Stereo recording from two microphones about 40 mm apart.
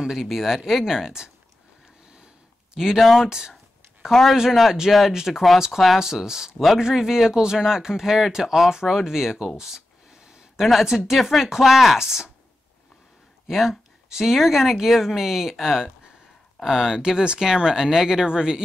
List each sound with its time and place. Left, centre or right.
0.0 s speech: centre
2.8 s speech: centre
3.3 s speech: centre
4.1 s speech: centre
5.9 s speech: centre
13.5 s speech: centre